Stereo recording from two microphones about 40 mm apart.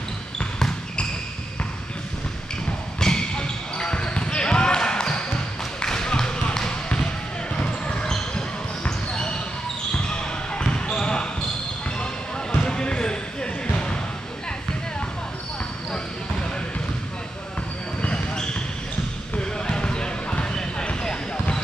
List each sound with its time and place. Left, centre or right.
3.0 s basketball bounce: centre
12.5 s basketball bounce: left
18.0 s basketball bounce: left